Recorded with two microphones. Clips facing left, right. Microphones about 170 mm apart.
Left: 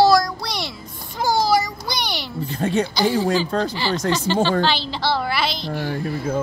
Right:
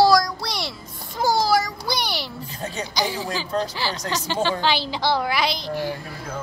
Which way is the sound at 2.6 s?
60° left (ahead or behind).